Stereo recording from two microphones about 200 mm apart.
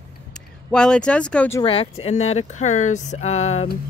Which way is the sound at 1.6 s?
30° left (ahead or behind).